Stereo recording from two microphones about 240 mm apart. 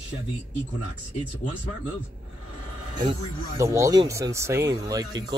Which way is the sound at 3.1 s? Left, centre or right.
Centre.